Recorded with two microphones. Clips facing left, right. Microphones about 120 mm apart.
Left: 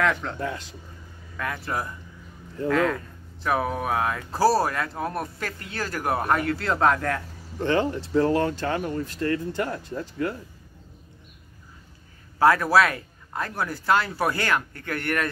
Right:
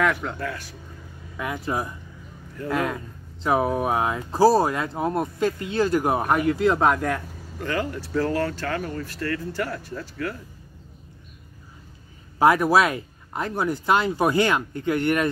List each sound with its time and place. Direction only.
0.0 s speech: 5° right (ahead or behind)
0.4 s speech: 20° left (ahead or behind)
1.3 s speech: 15° right (ahead or behind)
7.6 s speech: 25° left (ahead or behind)
12.4 s speech: 20° right (ahead or behind)